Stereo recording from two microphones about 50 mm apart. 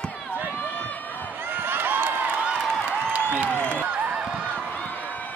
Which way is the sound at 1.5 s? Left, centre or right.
Right.